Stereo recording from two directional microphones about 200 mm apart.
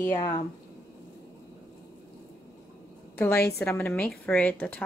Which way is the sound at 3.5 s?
10° left (ahead or behind).